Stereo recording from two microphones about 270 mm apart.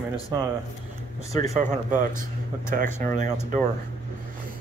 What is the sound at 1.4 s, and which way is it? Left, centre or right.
Speech, right.